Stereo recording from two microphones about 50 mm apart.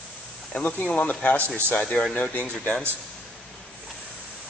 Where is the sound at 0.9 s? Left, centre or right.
Left.